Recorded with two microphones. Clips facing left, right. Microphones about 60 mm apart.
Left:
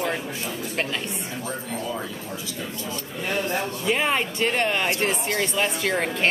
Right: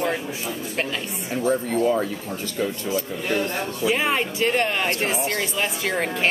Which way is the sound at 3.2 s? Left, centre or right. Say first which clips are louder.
Left 2 dB; centre.